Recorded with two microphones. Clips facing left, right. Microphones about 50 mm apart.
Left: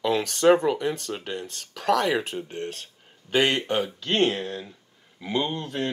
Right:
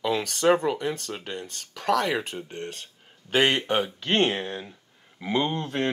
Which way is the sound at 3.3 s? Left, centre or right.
Centre.